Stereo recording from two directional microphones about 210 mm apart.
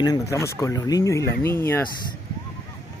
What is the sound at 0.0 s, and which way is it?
Speech, 15° left (ahead or behind).